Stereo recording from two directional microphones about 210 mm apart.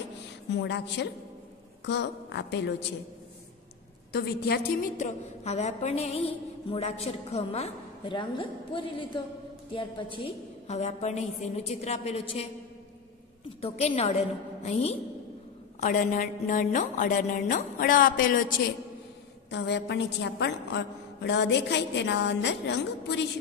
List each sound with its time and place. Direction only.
0.5 s a woman's voice: 55° left (ahead or behind)
4.1 s a woman's voice: 50° left (ahead or behind)
4.9 s a woman's voice: 35° left (ahead or behind)
13.6 s a woman's voice: 30° left (ahead or behind)
15.8 s a woman's voice: 40° left (ahead or behind)
19.5 s a woman's voice: 55° left (ahead or behind)